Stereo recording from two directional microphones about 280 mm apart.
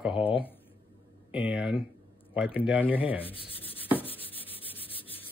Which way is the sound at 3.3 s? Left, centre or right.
Centre.